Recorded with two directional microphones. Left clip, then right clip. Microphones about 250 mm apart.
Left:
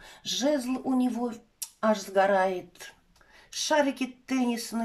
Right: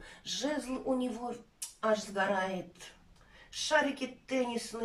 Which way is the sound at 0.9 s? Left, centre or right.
Left.